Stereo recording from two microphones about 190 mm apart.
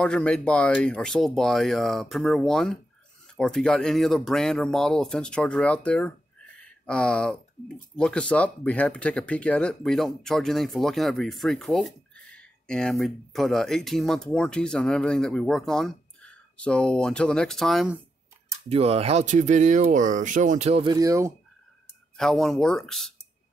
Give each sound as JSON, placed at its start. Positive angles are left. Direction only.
{"t": 0.0, "sound": "speech", "side_deg": 5}
{"t": 18.7, "sound": "speech", "side_deg": -30}
{"t": 20.9, "sound": "speech", "side_deg": -15}
{"t": 22.1, "sound": "speech", "side_deg": 0}